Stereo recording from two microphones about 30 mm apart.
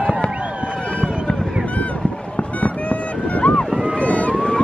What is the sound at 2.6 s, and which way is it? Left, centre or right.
Boat, left.